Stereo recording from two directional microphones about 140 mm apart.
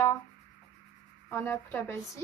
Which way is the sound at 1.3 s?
15° left (ahead or behind).